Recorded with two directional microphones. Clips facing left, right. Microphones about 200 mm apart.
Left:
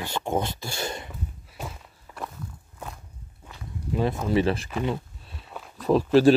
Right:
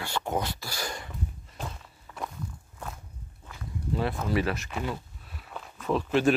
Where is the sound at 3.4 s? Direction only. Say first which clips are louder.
Even; 15° left (ahead or behind).